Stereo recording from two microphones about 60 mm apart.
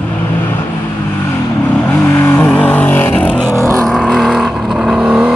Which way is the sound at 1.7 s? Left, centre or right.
Left.